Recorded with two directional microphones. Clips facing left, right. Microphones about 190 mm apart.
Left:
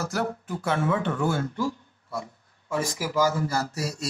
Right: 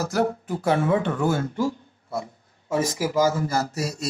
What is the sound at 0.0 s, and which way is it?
Speech, 40° right (ahead or behind).